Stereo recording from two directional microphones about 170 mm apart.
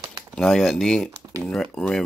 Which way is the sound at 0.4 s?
Centre (ahead or behind).